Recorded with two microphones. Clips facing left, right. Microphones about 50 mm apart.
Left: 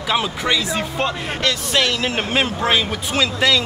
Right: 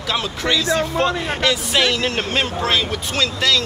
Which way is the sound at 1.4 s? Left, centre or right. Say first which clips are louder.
Right 1 dB; centre.